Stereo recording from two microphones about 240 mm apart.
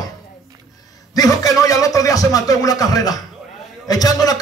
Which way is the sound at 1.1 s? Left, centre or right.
Centre.